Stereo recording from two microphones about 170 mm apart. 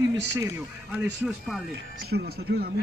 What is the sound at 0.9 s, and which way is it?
Speech, 5° right (ahead or behind).